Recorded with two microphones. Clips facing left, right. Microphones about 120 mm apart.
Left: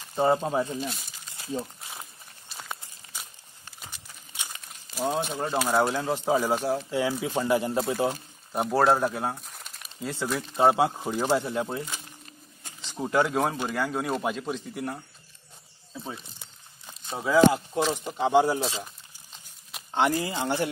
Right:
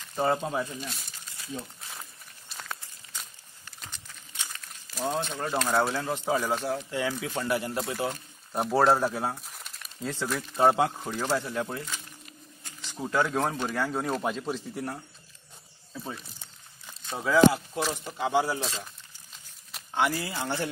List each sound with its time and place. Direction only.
0.0 s snake: 20° left (ahead or behind)
0.4 s speech: 30° left (ahead or behind)
0.8 s speech: centre (ahead or behind)
1.3 s a sound: 30° left (ahead or behind)
2.7 s walk: 10° left (ahead or behind)
3.8 s a sound: 10° left (ahead or behind)
5.3 s speech: 15° left (ahead or behind)
6.0 s speech: 15° left (ahead or behind)
8.5 s speech: centre (ahead or behind)
16.8 s a sound: 25° left (ahead or behind)
17.2 s speech: 20° left (ahead or behind)
19.9 s speech: 20° left (ahead or behind)